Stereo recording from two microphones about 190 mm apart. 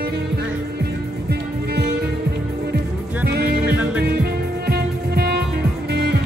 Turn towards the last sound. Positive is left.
turn(degrees=-60)  # may be behind; listen again after turning